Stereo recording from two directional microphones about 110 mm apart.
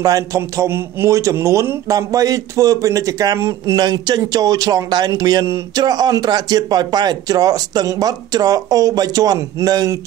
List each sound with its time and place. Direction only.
0.0 s speech: 30° right (ahead or behind)